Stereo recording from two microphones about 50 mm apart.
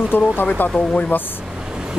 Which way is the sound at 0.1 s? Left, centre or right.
Left.